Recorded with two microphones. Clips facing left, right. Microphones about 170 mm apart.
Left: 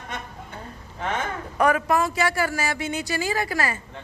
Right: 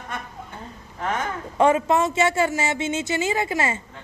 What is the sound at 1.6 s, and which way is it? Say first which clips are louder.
A woman's voice: right 3 dB; 25° right (ahead or behind).